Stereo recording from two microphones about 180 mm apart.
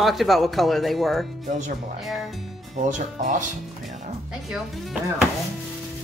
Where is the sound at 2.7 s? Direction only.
45° right (ahead or behind).